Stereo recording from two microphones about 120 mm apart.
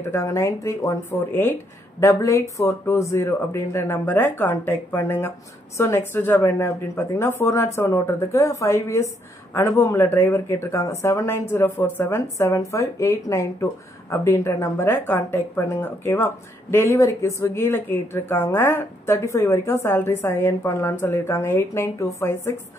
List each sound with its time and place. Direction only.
0.0 s a woman's voice: 20° left (ahead or behind)